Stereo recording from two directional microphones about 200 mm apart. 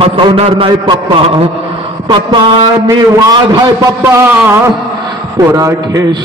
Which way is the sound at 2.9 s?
20° right (ahead or behind).